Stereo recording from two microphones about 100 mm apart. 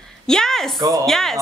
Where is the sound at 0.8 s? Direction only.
35° right (ahead or behind).